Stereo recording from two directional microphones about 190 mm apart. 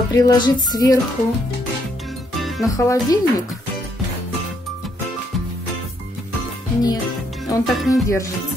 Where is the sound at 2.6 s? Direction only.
15° left (ahead or behind).